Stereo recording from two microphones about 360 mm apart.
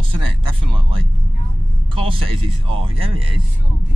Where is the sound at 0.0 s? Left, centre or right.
Centre.